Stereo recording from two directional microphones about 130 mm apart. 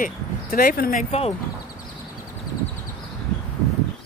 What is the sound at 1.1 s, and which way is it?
Speech, 50° left (ahead or behind).